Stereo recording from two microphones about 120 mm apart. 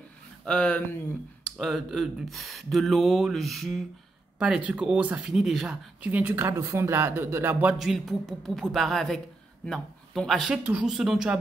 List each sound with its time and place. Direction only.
0.5 s speech: 10° left (ahead or behind); by 7.5 s 20° right (ahead or behind)
7.6 s speech: 5° right (ahead or behind)
10.6 s speech: 10° right (ahead or behind)